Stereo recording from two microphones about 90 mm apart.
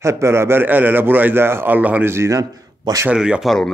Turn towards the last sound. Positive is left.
turn(degrees=-10)  # may be behind; listen again after turning